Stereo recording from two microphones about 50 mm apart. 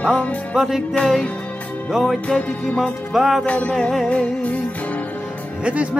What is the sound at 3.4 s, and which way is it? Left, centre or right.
Music, left.